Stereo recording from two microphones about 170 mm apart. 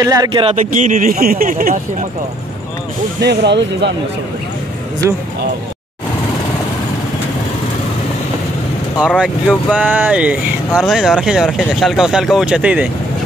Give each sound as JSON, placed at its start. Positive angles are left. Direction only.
{"t": 0.0, "sound": "speech", "side_deg": -25}
{"t": 3.2, "sound": "speech", "side_deg": -90}
{"t": 9.2, "sound": "speech", "side_deg": -5}